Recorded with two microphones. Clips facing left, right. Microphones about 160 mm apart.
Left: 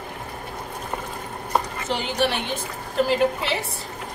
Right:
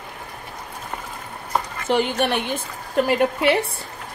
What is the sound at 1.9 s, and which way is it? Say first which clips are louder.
A woman's voice: right 4 dB; 55° right (ahead or behind).